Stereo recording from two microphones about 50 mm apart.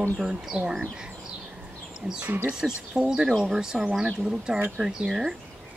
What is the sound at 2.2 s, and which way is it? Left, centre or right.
Speech, right.